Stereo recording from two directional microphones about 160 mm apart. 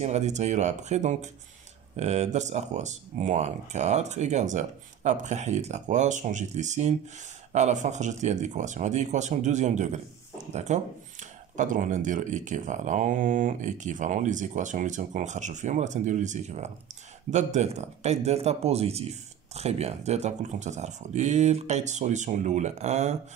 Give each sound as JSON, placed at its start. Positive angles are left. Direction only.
{"t": 0.0, "sound": "speech", "side_deg": -45}